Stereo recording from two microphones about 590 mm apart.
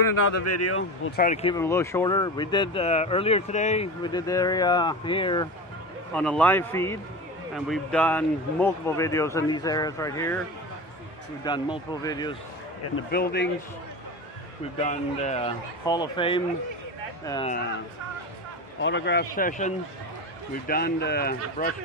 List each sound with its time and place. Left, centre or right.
0.0 s speech: left; by 10.4 s centre
11.4 s speech: centre
14.8 s speech: centre
18.8 s speech: centre